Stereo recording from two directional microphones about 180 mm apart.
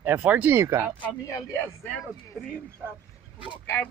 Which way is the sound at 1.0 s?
10° left (ahead or behind).